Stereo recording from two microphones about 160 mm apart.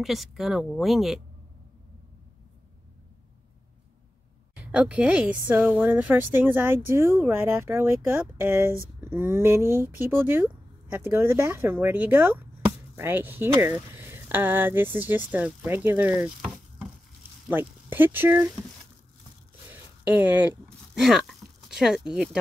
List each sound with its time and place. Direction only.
0.0 s speech: centre (ahead or behind)
4.6 s a woman's voice: 10° right (ahead or behind)
17.5 s speech: 15° right (ahead or behind)
19.7 s a sound: 10° right (ahead or behind)